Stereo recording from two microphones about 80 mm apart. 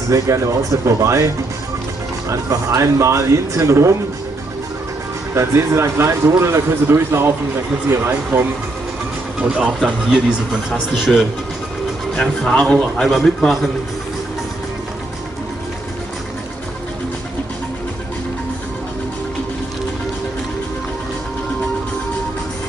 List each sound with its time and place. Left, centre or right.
0.1 s speech: right
2.2 s speech: right
5.3 s speech: right
9.4 s speech: centre
12.2 s speech: centre